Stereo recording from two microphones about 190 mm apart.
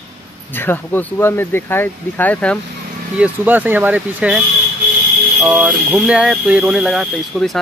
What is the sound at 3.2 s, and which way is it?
Speech, 10° right (ahead or behind).